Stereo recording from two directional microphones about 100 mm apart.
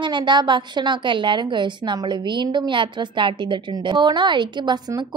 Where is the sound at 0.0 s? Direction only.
50° right (ahead or behind).